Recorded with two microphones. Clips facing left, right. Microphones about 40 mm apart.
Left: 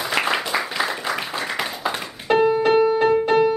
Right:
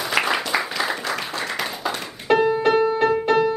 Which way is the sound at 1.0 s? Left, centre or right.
Centre.